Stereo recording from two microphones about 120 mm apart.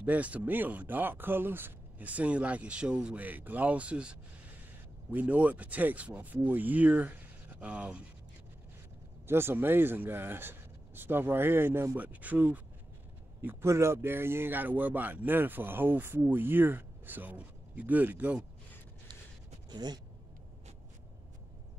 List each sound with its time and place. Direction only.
0.0 s speech: 10° right (ahead or behind)
9.3 s speech: 20° right (ahead or behind)
19.7 s speech: 35° right (ahead or behind)